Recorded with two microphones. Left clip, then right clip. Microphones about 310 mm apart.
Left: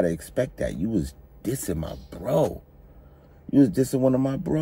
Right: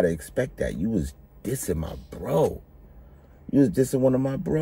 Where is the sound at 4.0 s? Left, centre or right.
Centre.